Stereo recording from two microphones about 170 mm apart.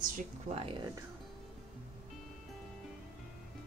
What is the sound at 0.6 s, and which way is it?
Speech, 35° right (ahead or behind).